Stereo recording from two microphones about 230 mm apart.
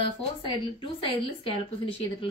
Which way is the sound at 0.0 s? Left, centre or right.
Left.